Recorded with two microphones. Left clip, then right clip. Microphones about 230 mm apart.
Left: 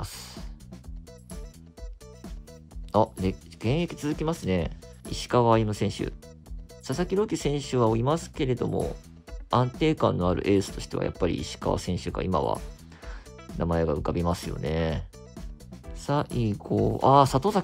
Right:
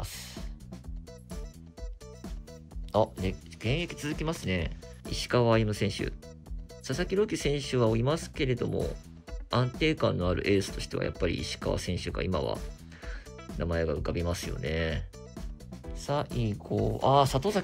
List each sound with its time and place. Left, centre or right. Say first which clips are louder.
0.0 s music: left 2 dB; centre
2.9 s speech: left 3 dB; centre
9.8 s speech: left 3 dB; centre
12.5 s music: left 2 dB; centre
13.6 s speech: left 4 dB; centre